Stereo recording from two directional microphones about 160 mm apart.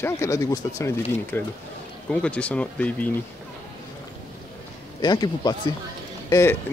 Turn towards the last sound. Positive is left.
turn(degrees=20)  # may be behind; listen again after turning